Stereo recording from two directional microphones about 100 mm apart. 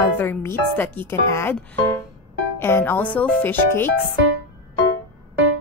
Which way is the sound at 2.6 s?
20° left (ahead or behind).